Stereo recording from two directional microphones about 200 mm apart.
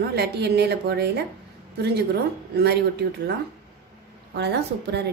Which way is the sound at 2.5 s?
55° right (ahead or behind).